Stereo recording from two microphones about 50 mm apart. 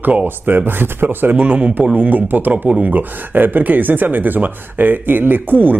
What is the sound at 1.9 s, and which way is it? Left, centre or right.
Speech, right.